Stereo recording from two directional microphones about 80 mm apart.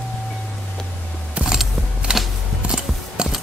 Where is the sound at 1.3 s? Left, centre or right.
Centre.